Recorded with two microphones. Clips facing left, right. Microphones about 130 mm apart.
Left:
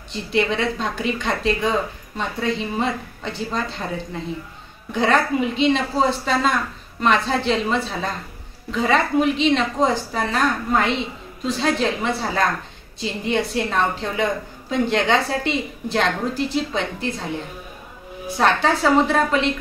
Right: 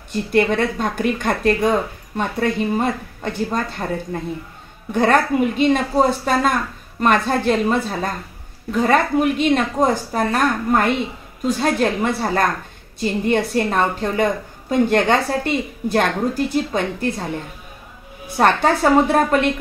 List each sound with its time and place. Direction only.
0.1 s a woman's voice: 50° right (ahead or behind)
18.4 s a woman's voice: 50° right (ahead or behind)